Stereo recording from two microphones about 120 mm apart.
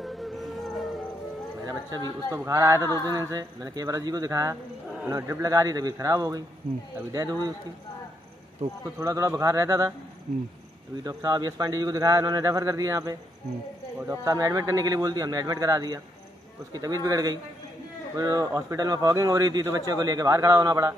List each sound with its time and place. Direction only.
0.0 s music: centre (ahead or behind)
1.7 s a sound: 30° right (ahead or behind)
2.3 s a man's voice: 25° right (ahead or behind)
8.8 s a man's voice: 25° right (ahead or behind)
11.1 s a man's voice: 30° right (ahead or behind)